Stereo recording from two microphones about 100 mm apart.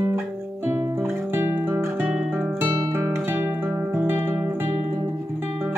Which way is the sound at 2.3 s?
20° right (ahead or behind).